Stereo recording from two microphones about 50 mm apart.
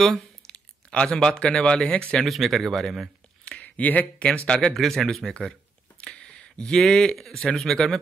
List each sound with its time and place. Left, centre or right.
0.5 s speech: centre
2.2 s a man's voice: centre
3.4 s a sound: left
4.2 s speech: centre
4.7 s a man's voice: centre
5.2 s speech: centre
5.9 s speech: centre